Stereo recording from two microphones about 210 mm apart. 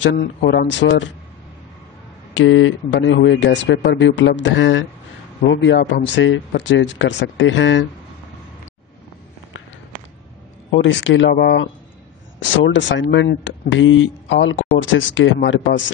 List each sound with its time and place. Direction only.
0.0 s speech: 55° left (ahead or behind)
2.3 s speech: 65° left (ahead or behind)
10.7 s speech: 60° left (ahead or behind)